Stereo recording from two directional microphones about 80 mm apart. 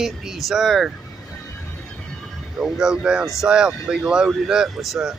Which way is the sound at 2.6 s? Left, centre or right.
Centre.